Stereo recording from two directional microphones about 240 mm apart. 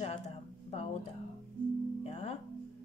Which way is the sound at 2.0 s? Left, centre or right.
Left.